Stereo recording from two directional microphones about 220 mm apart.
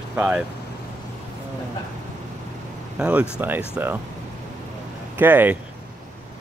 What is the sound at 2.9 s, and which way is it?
Speech, 5° right (ahead or behind).